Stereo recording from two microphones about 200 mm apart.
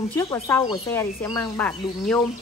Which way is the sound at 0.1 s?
15° left (ahead or behind).